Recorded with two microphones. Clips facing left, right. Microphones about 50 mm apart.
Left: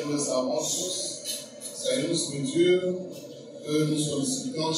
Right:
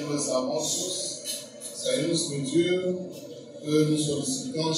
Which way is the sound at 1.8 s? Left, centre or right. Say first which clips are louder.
Right 1 dB; centre.